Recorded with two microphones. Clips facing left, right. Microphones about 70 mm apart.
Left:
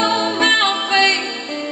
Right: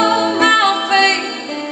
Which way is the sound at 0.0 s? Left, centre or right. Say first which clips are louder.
Right 4 dB; centre.